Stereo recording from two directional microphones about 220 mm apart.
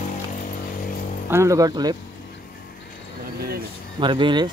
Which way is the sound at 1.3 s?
15° right (ahead or behind).